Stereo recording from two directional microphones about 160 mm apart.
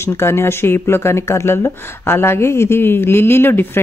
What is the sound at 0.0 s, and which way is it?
Speech, 15° left (ahead or behind).